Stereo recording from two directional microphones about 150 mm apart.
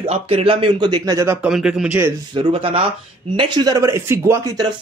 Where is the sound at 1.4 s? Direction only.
5° right (ahead or behind).